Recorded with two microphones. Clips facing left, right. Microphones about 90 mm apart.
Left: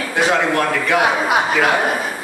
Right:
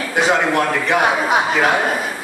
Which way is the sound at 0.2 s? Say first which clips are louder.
Even; 10° right (ahead or behind).